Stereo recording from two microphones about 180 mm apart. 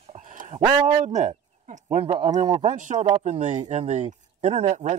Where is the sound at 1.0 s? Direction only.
40° right (ahead or behind).